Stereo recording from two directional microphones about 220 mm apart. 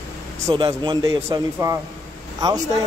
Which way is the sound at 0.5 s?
20° right (ahead or behind).